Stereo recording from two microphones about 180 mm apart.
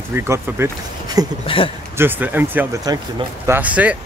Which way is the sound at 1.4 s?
30° left (ahead or behind).